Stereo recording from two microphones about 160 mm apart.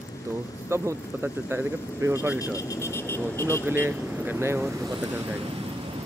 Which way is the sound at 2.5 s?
20° left (ahead or behind).